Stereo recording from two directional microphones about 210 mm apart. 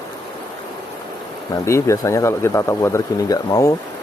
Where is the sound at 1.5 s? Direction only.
15° left (ahead or behind).